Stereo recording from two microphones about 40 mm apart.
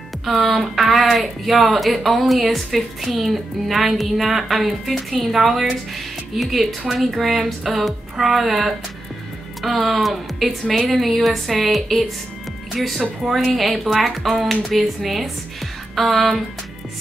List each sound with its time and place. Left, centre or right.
0.2 s a woman's voice: centre
13.2 s a woman's voice: centre
13.6 s a woman's voice: centre